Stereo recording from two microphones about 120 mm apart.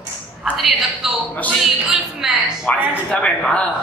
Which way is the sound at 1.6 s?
Centre (ahead or behind).